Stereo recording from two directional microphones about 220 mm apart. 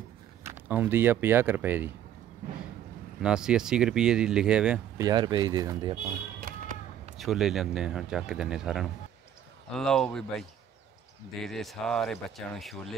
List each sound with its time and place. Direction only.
0.4 s speech: 10° right (ahead or behind)
3.2 s speech: 5° right (ahead or behind)
4.9 s speech: 20° right (ahead or behind)
6.5 s a sound: 40° right (ahead or behind)
7.2 s speech: centre (ahead or behind)